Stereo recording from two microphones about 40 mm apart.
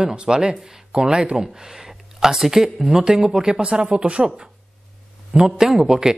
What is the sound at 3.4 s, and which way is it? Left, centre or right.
Speech, right.